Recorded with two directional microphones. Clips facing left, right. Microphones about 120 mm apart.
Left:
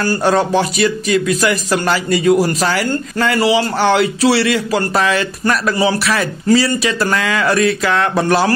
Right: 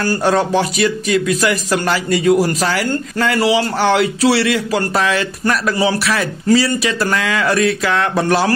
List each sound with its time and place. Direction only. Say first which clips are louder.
0.0 s a man's voice: left 1 dB; 30° left (ahead or behind)